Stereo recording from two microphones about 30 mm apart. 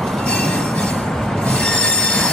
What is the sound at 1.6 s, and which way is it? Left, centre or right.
Train wheels squealing, centre.